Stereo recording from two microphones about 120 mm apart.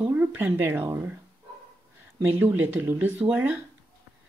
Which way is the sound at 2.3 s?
20° right (ahead or behind).